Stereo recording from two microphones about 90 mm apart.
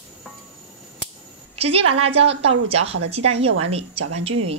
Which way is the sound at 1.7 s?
90° right.